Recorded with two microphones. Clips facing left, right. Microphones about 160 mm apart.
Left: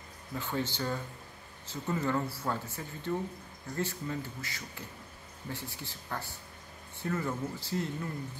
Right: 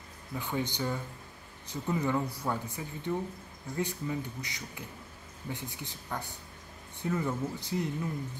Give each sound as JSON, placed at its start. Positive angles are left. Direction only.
{"t": 0.4, "sound": "speech", "side_deg": -15}